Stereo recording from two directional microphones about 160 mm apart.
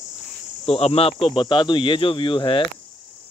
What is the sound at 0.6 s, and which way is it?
Speech, 40° left (ahead or behind).